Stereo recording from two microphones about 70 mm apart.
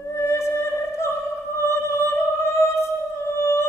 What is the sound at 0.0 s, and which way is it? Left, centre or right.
Music, left.